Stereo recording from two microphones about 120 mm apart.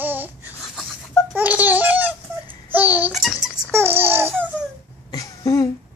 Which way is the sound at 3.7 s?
20° right (ahead or behind).